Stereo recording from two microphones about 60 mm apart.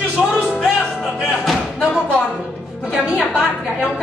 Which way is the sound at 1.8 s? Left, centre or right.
Centre.